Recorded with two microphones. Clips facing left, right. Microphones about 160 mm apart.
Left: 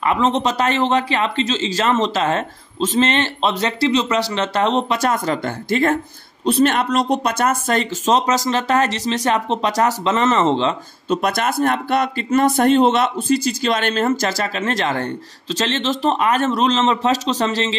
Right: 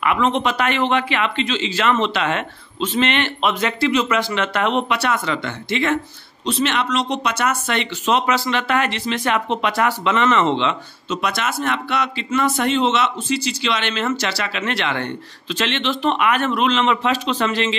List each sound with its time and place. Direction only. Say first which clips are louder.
0.0 s speech: left 1 dB; 35° left (ahead or behind)
11.1 s speech: left 4 dB; 50° left (ahead or behind)